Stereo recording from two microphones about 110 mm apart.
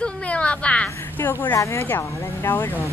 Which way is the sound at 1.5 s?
30° left (ahead or behind).